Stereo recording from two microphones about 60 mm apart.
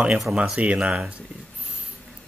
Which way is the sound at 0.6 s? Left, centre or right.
Right.